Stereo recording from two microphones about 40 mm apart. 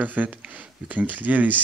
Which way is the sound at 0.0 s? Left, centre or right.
Right.